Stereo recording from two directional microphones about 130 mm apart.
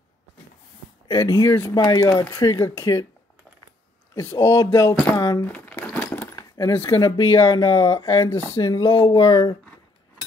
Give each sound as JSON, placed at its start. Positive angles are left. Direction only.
{"t": 1.0, "sound": "speech", "side_deg": 30}
{"t": 1.8, "sound": "speech", "side_deg": 35}
{"t": 4.1, "sound": "speech", "side_deg": 20}
{"t": 5.4, "sound": "a sound", "side_deg": 10}
{"t": 6.3, "sound": "keys jangling", "side_deg": 25}
{"t": 7.0, "sound": "speech", "side_deg": 35}